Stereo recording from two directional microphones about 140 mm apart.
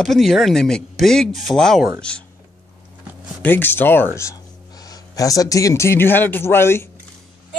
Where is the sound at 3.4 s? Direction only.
15° left (ahead or behind).